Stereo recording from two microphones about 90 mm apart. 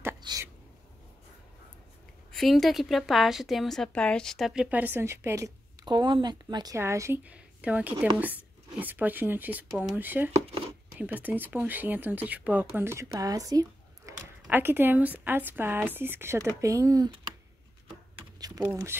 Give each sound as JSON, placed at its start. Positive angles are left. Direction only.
{"t": 0.3, "sound": "a sound", "side_deg": -55}
{"t": 2.3, "sound": "a woman's voice", "side_deg": 0}
{"t": 4.6, "sound": "speech", "side_deg": -15}
{"t": 5.0, "sound": "speech", "side_deg": -30}
{"t": 5.9, "sound": "speech", "side_deg": -55}
{"t": 6.7, "sound": "speech", "side_deg": -35}
{"t": 7.2, "sound": "speech", "side_deg": -15}
{"t": 12.9, "sound": "speech", "side_deg": -35}
{"t": 14.5, "sound": "speech", "side_deg": -25}
{"t": 16.6, "sound": "speech", "side_deg": -40}